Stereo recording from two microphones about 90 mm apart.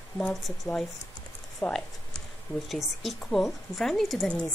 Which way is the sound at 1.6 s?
15° left (ahead or behind).